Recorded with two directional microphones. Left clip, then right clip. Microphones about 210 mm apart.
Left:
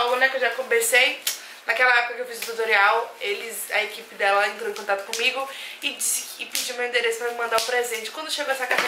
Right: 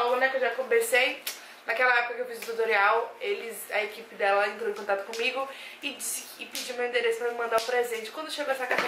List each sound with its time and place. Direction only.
0.0 s a sound: 10° right (ahead or behind)
0.7 s a woman's voice: 5° right (ahead or behind)
6.5 s a woman's voice: 5° right (ahead or behind)